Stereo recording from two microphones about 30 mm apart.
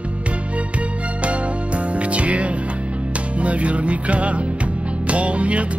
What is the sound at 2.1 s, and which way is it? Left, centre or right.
Music, right.